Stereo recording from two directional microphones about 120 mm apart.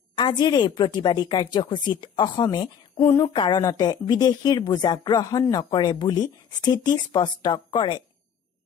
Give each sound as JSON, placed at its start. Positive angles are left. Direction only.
{"t": 0.1, "sound": "speech", "side_deg": 35}